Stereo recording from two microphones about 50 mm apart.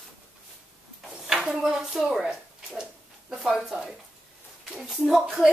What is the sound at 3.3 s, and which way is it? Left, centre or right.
Speech, centre.